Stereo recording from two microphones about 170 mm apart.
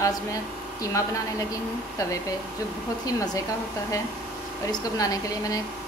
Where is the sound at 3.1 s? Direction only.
20° left (ahead or behind).